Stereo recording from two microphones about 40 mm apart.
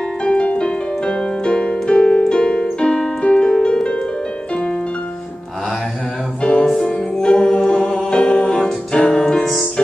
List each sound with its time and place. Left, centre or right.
0.2 s music: left
6.6 s music: centre
7.2 s music: left
9.4 s music: centre